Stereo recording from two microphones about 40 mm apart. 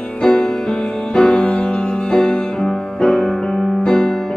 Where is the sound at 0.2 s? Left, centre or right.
Left.